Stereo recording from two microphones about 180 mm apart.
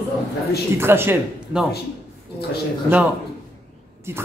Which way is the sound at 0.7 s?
15° right (ahead or behind).